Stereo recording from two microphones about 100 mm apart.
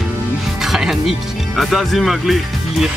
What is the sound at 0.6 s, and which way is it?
Speech, 5° right (ahead or behind).